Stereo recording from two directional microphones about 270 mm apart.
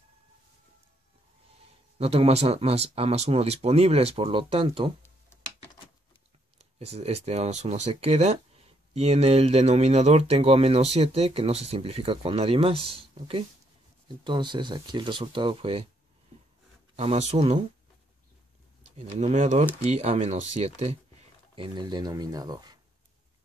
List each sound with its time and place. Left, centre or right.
2.0 s speech: right
6.6 s speech: right
16.9 s speech: right
18.8 s speech: right